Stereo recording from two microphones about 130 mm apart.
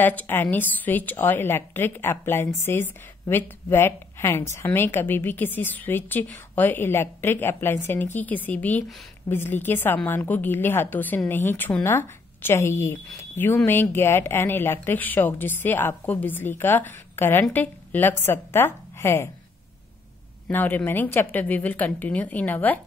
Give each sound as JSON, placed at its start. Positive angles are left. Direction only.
{"t": 0.0, "sound": "speech", "side_deg": 15}
{"t": 20.4, "sound": "speech", "side_deg": 15}